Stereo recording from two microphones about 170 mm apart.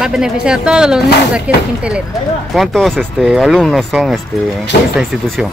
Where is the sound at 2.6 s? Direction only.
Centre (ahead or behind).